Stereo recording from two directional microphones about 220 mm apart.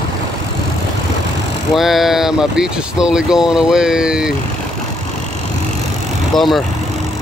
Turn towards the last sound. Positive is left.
turn(degrees=0)  # may be behind; listen again after turning